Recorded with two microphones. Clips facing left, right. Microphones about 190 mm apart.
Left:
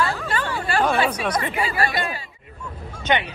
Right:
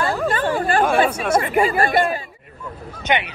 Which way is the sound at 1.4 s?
50° right (ahead or behind).